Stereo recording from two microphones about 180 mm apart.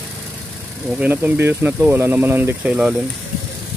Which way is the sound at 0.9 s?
10° right (ahead or behind).